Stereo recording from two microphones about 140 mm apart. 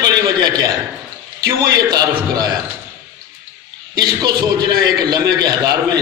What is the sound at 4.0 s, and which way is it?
A man's voice, 30° right (ahead or behind).